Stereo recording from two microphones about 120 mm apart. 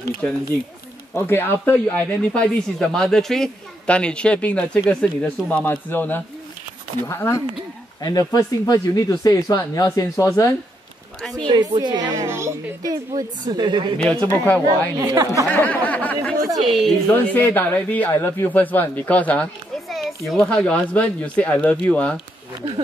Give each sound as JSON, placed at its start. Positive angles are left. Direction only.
{"t": 0.2, "sound": "speech", "side_deg": 10}
{"t": 11.4, "sound": "a child's voice", "side_deg": -40}
{"t": 13.9, "sound": "speech", "side_deg": 5}
{"t": 15.0, "sound": "speech", "side_deg": -25}
{"t": 15.5, "sound": "speech", "side_deg": 15}